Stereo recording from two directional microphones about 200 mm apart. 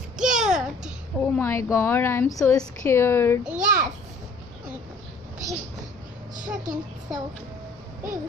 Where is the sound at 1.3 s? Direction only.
15° left (ahead or behind).